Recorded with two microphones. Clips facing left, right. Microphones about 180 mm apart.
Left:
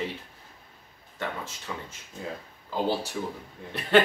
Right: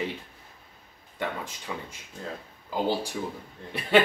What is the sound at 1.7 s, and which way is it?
Speech, 10° right (ahead or behind).